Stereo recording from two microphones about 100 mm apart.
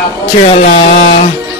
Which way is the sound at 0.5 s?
90° left.